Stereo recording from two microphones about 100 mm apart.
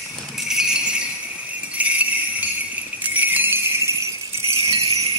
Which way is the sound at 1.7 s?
15° right (ahead or behind).